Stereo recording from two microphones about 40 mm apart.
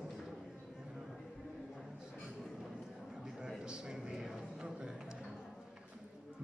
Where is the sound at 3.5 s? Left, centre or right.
Right.